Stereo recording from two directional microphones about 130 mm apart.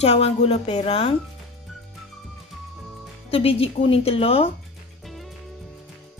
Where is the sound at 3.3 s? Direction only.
45° left (ahead or behind).